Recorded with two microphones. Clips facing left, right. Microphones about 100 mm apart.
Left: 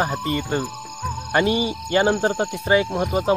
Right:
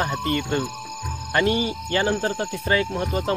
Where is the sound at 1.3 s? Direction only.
20° left (ahead or behind).